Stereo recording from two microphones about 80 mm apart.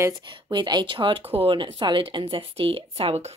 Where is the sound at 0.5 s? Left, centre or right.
Right.